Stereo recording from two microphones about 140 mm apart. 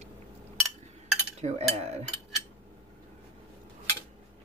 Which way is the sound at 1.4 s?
50° right (ahead or behind).